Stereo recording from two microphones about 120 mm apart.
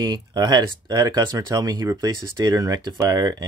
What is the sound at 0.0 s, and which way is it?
Speech, 35° right (ahead or behind).